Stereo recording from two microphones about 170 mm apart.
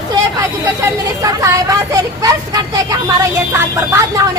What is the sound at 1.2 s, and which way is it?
Vehicle, 20° right (ahead or behind).